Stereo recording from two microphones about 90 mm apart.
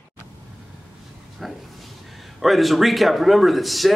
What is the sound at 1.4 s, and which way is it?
Speech, centre (ahead or behind).